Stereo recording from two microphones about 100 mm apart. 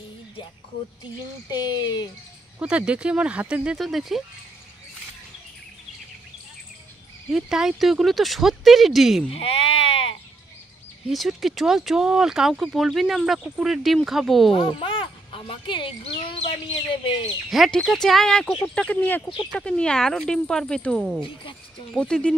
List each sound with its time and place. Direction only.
1.5 s speech: 45° left (ahead or behind)
2.6 s speech: 10° right (ahead or behind)
7.3 s speech: 5° right (ahead or behind)
9.3 s sheep: 70° left (ahead or behind)
11.1 s speech: centre (ahead or behind)
14.5 s speech: 60° left (ahead or behind)
16.0 s speech: 80° left
16.9 s speech: 60° left (ahead or behind)
17.5 s speech: 5° left (ahead or behind)
18.9 s speech: 15° left (ahead or behind)